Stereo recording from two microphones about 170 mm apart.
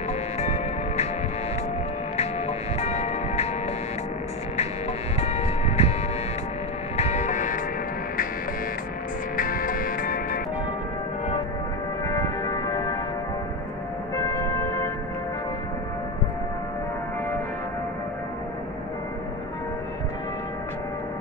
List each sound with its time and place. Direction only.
0.4 s music: 40° left (ahead or behind)
2.1 s music: 40° left (ahead or behind)
5.2 s music: 40° left (ahead or behind)
7.0 s music: 40° left (ahead or behind)
9.4 s music: 55° left (ahead or behind)
12.1 s music: 20° left (ahead or behind)